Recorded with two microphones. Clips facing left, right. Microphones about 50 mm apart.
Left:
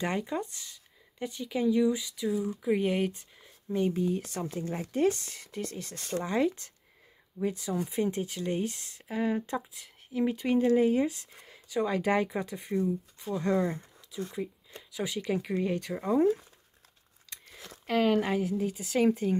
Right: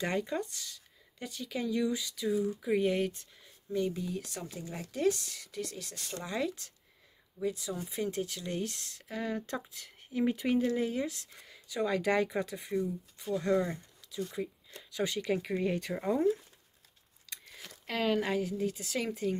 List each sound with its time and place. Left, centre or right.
0.0 s speech: centre; by 8.0 s left
8.0 s speech: left
9.6 s speech: centre
10.8 s speech: centre
16.2 s speech: left
17.8 s speech: centre